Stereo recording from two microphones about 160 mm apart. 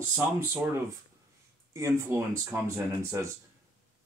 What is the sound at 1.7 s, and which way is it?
Speech, 15° right (ahead or behind).